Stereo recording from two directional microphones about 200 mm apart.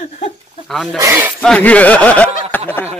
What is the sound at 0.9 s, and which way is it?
Speech, 10° right (ahead or behind).